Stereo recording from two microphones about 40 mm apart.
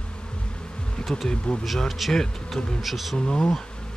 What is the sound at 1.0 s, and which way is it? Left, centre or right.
Bee, centre.